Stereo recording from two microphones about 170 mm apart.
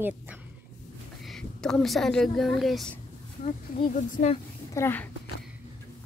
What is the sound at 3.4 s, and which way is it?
Speech, 55° left (ahead or behind).